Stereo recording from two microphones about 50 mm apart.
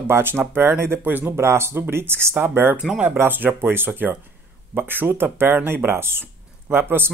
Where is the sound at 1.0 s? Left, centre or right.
Right.